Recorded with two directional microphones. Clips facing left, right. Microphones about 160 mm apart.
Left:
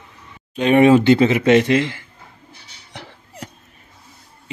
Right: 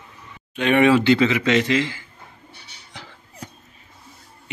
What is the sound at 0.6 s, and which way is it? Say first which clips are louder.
Speech: left 4 dB; 40° left (ahead or behind).